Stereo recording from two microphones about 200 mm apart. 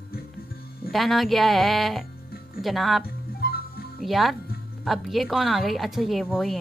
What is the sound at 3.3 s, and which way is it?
Music, 50° left (ahead or behind).